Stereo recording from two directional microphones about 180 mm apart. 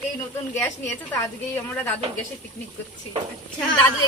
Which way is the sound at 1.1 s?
15° left (ahead or behind).